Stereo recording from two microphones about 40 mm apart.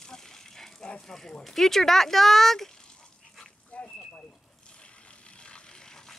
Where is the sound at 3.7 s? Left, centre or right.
Left.